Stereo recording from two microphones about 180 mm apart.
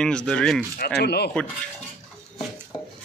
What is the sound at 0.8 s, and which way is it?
Speech, 65° left (ahead or behind).